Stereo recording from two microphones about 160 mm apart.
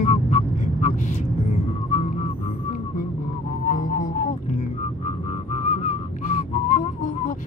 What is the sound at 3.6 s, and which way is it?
Music, 50° left (ahead or behind).